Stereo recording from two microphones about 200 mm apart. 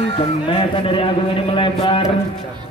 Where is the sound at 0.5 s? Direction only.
25° left (ahead or behind).